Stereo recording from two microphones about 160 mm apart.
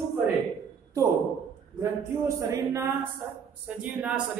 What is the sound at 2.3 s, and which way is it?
Speech, 20° right (ahead or behind).